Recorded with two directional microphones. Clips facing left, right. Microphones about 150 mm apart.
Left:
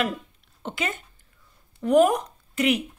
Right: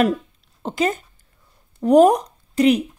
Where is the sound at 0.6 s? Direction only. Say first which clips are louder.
Right 9 dB; 35° right (ahead or behind).